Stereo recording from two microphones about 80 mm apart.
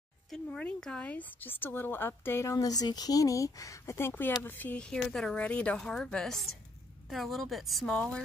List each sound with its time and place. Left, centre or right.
0.5 s speech: centre; by 4.1 s left
4.4 s speech: left
4.8 s a woman's voice: centre
7.9 s speech: centre